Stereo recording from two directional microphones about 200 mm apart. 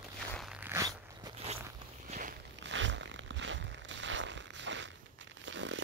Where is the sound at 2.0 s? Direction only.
40° right (ahead or behind).